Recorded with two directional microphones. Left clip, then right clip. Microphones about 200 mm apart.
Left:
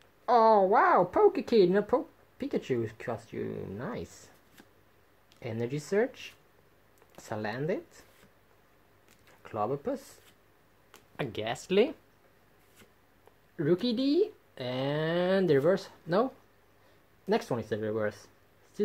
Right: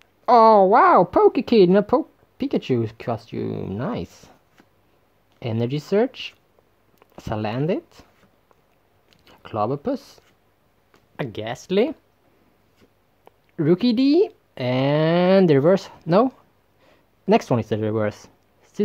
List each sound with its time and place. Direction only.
0.0 s a child's voice: 40° right (ahead or behind)
5.4 s a child's voice: 35° right (ahead or behind)
9.4 s a child's voice: 35° right (ahead or behind)
11.1 s speech: 20° right (ahead or behind)
13.6 s a child's voice: 40° right (ahead or behind)
17.3 s speech: 40° right (ahead or behind)